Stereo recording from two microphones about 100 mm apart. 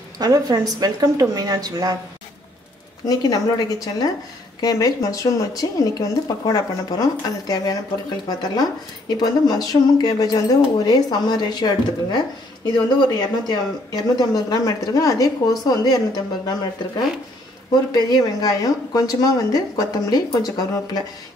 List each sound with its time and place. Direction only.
0.2 s speech: 40° right (ahead or behind)
3.1 s speech: 40° left (ahead or behind)